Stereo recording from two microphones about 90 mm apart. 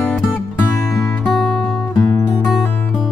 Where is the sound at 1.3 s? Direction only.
10° left (ahead or behind).